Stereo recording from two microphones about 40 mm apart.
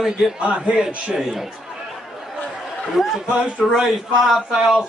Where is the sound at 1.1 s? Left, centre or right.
Centre.